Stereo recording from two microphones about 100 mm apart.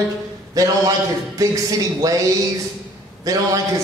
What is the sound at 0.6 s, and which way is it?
A man's voice, 35° right (ahead or behind).